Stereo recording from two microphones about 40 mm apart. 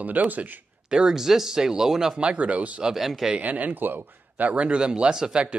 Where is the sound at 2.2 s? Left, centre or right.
Right.